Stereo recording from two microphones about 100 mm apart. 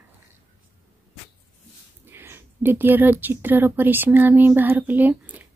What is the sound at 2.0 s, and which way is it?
Speech, 25° right (ahead or behind).